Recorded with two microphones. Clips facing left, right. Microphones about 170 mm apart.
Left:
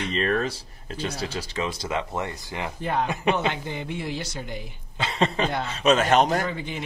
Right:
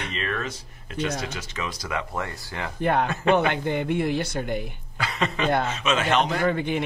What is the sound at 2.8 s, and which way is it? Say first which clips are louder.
A woman's voice: right 3 dB; 60° right (ahead or behind).